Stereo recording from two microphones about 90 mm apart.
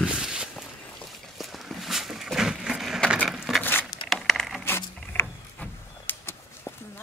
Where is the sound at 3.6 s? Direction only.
25° left (ahead or behind).